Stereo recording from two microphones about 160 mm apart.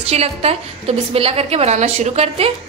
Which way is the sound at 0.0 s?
40° right (ahead or behind).